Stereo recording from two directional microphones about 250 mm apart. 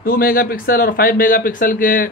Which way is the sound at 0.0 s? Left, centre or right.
Left.